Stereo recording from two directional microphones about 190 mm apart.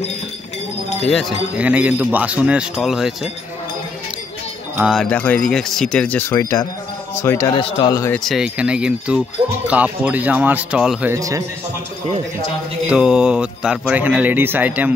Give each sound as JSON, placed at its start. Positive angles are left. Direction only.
{"t": 1.6, "sound": "speech", "side_deg": -5}
{"t": 4.7, "sound": "speech", "side_deg": -5}
{"t": 5.0, "sound": "speech", "side_deg": 5}
{"t": 7.5, "sound": "speech", "side_deg": 25}
{"t": 8.2, "sound": "speech", "side_deg": 0}
{"t": 11.1, "sound": "speech", "side_deg": -15}
{"t": 12.8, "sound": "speech", "side_deg": -5}